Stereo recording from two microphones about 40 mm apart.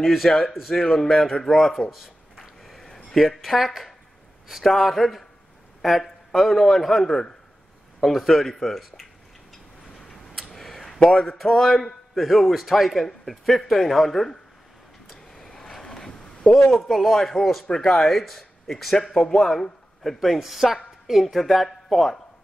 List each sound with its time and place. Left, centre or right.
0.5 s a man's voice: centre
0.9 s speech: centre
2.6 s a sound: centre
3.2 s a man's voice: centre
9.9 s tick-tock: centre
11.0 s speech: left
11.6 s a man's voice: centre
15.0 s a sound: centre
16.7 s a man's voice: centre
20.3 s speech: centre